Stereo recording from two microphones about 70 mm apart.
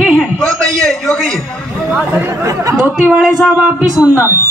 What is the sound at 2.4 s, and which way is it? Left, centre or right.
Speech, right.